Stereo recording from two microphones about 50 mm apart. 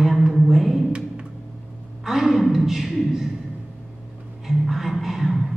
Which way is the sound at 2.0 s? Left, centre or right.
Centre.